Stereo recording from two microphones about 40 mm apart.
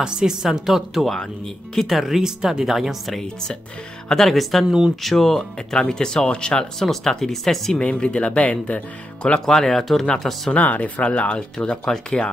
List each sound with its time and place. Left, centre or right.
0.0 s speech: centre
1.4 s speech: centre
2.0 s speech: centre
2.6 s speech: centre
3.2 s speech: centre
4.1 s speech: centre
4.6 s speech: centre
5.0 s speech: centre
7.8 s speech: left
9.5 s speech: centre
10.5 s speech: left